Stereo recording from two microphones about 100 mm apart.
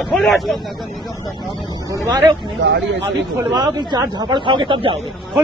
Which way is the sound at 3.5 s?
45° right (ahead or behind).